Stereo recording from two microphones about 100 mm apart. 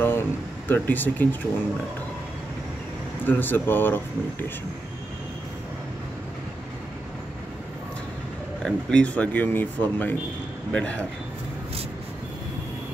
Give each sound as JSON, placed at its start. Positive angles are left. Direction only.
{"t": 0.0, "sound": "speech", "side_deg": 20}
{"t": 3.3, "sound": "speech", "side_deg": 20}
{"t": 8.6, "sound": "speech", "side_deg": 10}